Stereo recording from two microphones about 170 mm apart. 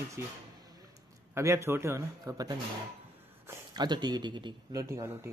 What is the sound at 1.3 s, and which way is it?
A man's voice, 15° right (ahead or behind).